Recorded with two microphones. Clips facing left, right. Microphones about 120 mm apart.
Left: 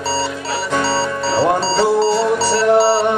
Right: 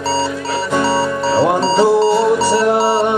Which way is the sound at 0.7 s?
10° right (ahead or behind).